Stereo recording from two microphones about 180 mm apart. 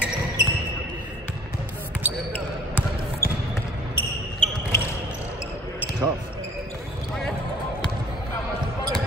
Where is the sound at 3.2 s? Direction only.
55° left (ahead or behind).